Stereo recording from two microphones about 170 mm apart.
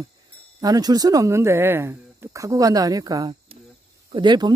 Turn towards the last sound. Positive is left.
turn(degrees=-25)  # may be behind; listen again after turning